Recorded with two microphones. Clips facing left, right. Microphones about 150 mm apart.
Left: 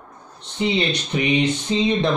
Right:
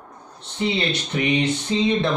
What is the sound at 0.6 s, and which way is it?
A man's voice, 20° left (ahead or behind).